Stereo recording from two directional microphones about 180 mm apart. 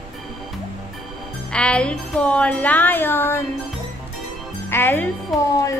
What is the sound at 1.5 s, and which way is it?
A woman's voice, 5° left (ahead or behind).